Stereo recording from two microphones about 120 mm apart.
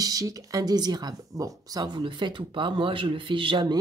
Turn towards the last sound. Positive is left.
turn(degrees=-40)  # may be behind; listen again after turning